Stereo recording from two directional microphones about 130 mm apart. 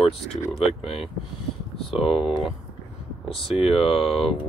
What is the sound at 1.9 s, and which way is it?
Speech, 45° left (ahead or behind).